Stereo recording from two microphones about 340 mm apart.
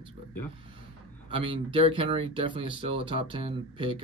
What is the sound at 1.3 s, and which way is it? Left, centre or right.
Speech, centre.